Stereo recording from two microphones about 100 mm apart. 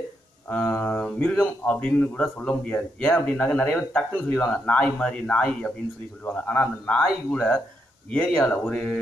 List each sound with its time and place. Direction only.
0.5 s speech: 15° left (ahead or behind)